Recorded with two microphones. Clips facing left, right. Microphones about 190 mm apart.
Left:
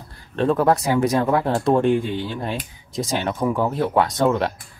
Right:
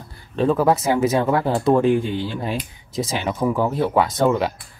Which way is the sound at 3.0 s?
Centre (ahead or behind).